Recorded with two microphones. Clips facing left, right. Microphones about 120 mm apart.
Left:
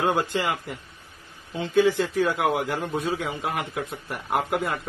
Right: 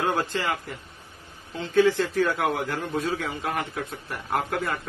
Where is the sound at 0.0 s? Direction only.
15° left (ahead or behind).